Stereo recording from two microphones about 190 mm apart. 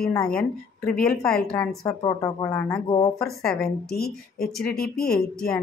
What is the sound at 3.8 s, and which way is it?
Speech, 55° left (ahead or behind).